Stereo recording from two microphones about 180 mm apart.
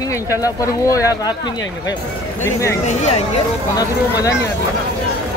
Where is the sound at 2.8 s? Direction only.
40° left (ahead or behind).